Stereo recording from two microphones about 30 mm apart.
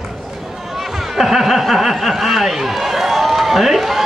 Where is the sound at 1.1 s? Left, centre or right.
Centre.